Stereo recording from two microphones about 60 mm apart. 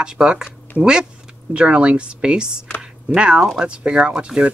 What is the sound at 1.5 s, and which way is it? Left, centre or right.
Speech, right.